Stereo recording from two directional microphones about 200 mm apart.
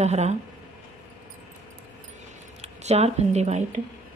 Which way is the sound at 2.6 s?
35° right (ahead or behind).